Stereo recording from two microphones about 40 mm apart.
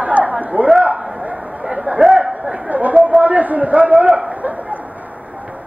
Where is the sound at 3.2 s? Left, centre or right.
Right.